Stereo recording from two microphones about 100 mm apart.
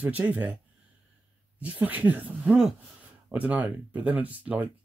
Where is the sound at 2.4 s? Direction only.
5° right (ahead or behind).